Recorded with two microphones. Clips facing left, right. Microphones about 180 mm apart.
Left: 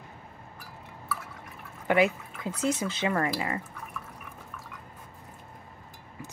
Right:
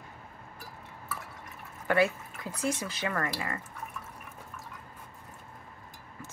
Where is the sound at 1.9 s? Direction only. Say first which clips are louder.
Left 2 dB; 20° left (ahead or behind).